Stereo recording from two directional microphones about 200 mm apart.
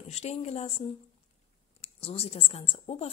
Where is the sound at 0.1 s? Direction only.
35° left (ahead or behind).